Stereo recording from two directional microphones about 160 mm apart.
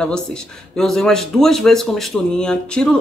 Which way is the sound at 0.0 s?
5° left (ahead or behind).